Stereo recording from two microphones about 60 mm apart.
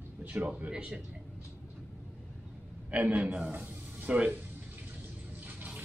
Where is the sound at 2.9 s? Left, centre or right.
Right.